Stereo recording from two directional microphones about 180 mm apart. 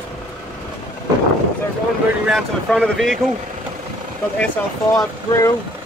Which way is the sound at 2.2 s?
Centre (ahead or behind).